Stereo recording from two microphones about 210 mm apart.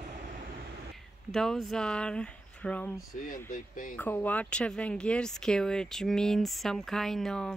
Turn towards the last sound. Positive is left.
turn(degrees=5)  # may be behind; listen again after turning